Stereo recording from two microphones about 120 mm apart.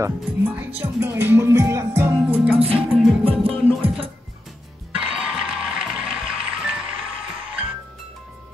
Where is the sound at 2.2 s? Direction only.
10° right (ahead or behind).